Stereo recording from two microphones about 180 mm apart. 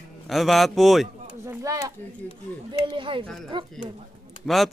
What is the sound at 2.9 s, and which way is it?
Speech, 30° right (ahead or behind).